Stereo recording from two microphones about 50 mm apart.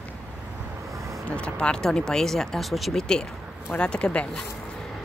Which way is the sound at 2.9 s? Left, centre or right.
Centre.